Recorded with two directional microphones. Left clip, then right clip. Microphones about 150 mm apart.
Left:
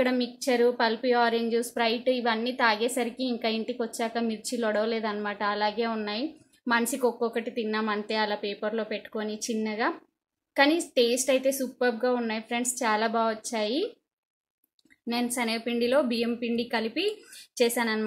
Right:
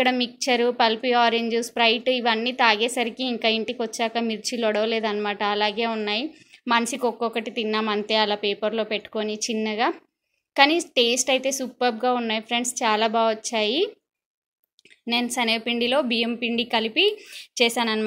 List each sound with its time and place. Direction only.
0.0 s a woman's voice: 20° right (ahead or behind)
15.0 s a woman's voice: 15° right (ahead or behind)